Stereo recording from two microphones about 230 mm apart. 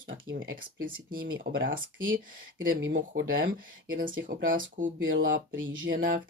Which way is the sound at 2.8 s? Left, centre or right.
Right.